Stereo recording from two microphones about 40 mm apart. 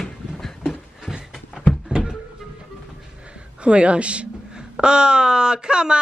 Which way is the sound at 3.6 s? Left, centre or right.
Right.